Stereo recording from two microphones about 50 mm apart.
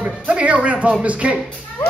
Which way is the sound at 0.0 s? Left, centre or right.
Right.